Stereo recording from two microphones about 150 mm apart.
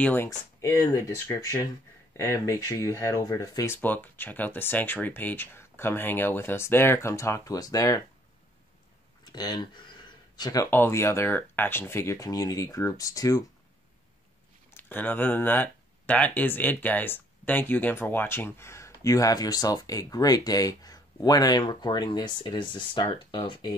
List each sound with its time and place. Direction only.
0.0 s speech: 15° left (ahead or behind)
9.2 s speech: 25° left (ahead or behind)
14.7 s speech: 15° left (ahead or behind); by 23.7 s 30° left (ahead or behind)